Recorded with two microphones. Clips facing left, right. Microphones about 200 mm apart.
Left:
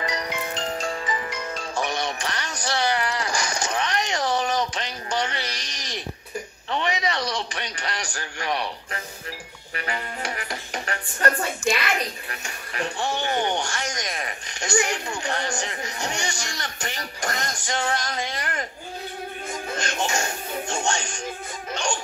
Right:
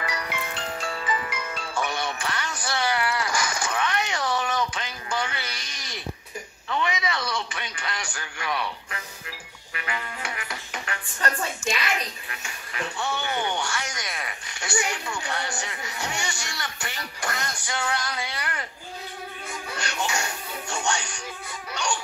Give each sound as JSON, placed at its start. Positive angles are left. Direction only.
{"t": 0.0, "sound": "music", "side_deg": 20}
{"t": 0.5, "sound": "music", "side_deg": 40}
{"t": 2.9, "sound": "a sound", "side_deg": 35}
{"t": 6.7, "sound": "a sound", "side_deg": 35}
{"t": 7.5, "sound": "music", "side_deg": 40}
{"t": 11.7, "sound": "speech", "side_deg": 50}
{"t": 12.9, "sound": "speech", "side_deg": 30}
{"t": 19.5, "sound": "music", "side_deg": 45}
{"t": 21.7, "sound": "a sound", "side_deg": 45}